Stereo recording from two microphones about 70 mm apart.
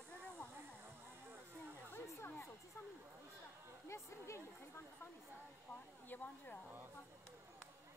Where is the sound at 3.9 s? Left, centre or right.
Left.